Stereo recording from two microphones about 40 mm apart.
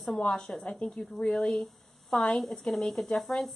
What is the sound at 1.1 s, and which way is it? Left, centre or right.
A woman's voice, centre.